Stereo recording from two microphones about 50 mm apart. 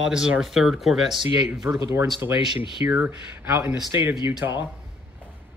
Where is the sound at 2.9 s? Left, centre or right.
Right.